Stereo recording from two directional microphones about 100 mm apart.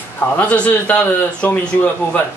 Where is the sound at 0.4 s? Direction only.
15° left (ahead or behind).